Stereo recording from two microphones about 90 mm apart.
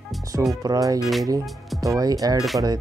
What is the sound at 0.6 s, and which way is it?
Speech, 40° right (ahead or behind).